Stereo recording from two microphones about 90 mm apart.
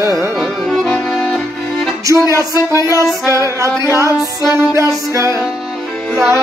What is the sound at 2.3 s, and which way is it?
Speech, 35° right (ahead or behind).